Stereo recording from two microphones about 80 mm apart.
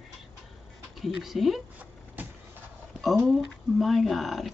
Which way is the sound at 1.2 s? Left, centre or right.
Centre.